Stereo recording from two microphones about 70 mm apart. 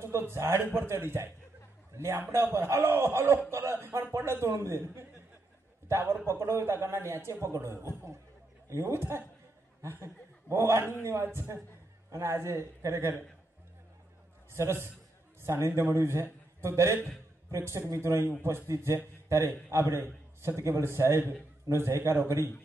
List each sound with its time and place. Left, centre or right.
0.0 s a man's voice: right
14.5 s a man's voice: right